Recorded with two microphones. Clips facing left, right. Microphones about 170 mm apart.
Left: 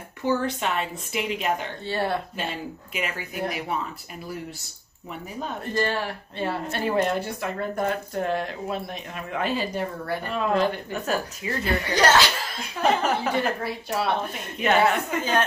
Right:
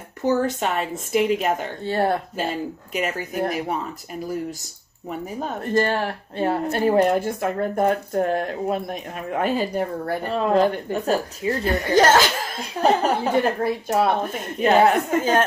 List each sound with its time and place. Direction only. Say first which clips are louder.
0.2 s speech: right 4 dB; 45° right (ahead or behind)
5.4 s a woman's voice: right 5 dB; 45° right (ahead or behind)